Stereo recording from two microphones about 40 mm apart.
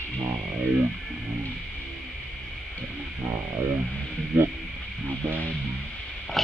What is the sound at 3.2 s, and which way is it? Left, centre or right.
Music, right.